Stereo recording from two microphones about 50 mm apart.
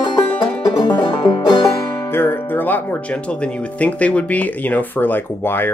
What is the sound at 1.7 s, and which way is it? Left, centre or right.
Music, left.